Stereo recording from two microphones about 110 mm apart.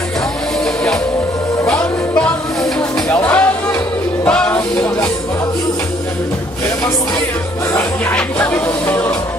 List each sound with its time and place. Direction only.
1.7 s music: 10° left (ahead or behind)
8.2 s music: 10° left (ahead or behind)